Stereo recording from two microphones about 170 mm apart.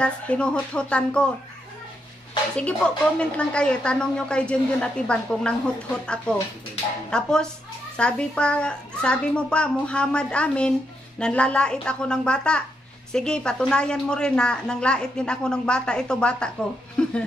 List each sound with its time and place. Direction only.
0.0 s a child's voice: 5° left (ahead or behind)
2.5 s a woman's voice: 5° left (ahead or behind)
7.1 s a woman's voice: 5° left (ahead or behind)